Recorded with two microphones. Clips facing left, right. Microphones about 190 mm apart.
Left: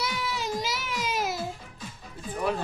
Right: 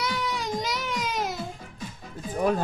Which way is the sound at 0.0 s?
5° left (ahead or behind).